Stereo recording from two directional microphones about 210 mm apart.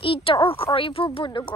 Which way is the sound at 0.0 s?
25° left (ahead or behind).